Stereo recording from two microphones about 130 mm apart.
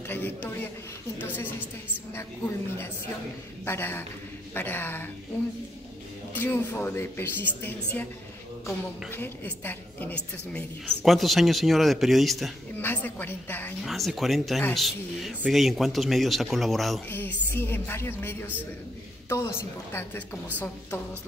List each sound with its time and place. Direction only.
0.1 s a woman's voice: 15° left (ahead or behind)
3.6 s a woman's voice: 15° left (ahead or behind)
6.3 s a woman's voice: 15° left (ahead or behind)
9.1 s a woman's voice: 15° left (ahead or behind); by 12.5 s centre (ahead or behind)
12.7 s a woman's voice: 15° left (ahead or behind)
13.8 s speech: centre (ahead or behind)
17.1 s a woman's voice: 15° left (ahead or behind)